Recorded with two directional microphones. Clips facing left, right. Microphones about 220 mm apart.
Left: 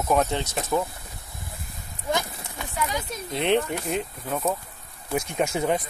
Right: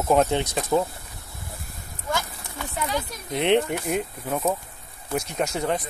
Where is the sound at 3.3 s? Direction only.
15° right (ahead or behind).